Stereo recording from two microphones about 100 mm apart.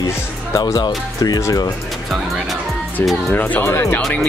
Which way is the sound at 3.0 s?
20° left (ahead or behind).